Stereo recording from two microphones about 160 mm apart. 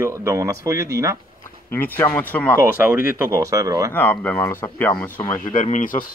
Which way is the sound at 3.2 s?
20° right (ahead or behind).